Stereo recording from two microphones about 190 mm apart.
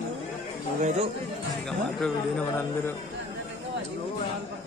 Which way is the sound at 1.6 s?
5° left (ahead or behind).